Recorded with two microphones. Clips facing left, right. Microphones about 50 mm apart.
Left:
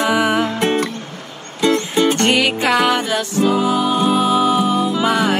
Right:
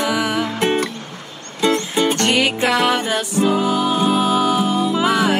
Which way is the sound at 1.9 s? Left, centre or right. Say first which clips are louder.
Left 2 dB; centre.